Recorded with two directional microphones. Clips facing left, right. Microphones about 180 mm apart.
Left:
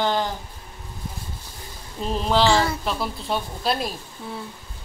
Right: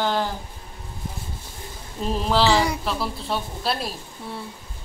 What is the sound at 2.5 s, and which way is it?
Speech, 15° right (ahead or behind).